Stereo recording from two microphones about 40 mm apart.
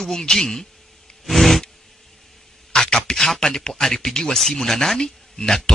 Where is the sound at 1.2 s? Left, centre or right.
Centre.